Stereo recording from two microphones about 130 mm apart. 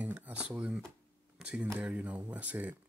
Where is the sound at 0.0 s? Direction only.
10° right (ahead or behind).